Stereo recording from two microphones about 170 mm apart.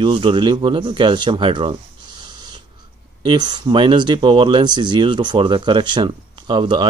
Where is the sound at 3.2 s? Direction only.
25° right (ahead or behind).